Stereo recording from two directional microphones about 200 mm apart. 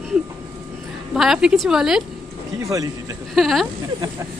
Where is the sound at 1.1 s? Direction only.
5° right (ahead or behind).